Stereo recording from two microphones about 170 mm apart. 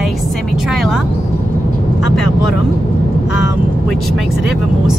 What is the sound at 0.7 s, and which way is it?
Vehicle, centre (ahead or behind).